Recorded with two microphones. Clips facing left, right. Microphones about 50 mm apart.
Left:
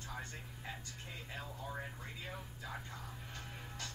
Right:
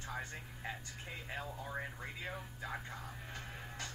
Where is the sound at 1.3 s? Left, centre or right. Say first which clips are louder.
Right 3 dB; centre.